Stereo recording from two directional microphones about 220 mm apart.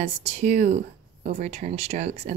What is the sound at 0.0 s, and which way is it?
Speech, 30° right (ahead or behind).